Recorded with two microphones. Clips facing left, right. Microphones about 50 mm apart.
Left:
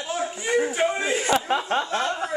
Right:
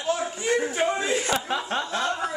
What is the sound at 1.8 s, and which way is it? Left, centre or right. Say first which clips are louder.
Speech: left 1 dB; left.